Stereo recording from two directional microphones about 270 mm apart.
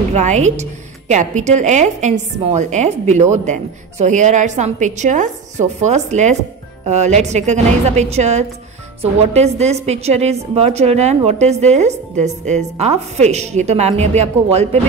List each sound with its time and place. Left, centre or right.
0.1 s a woman's voice: right